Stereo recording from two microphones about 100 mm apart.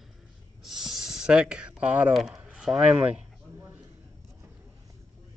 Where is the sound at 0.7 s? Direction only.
5° right (ahead or behind).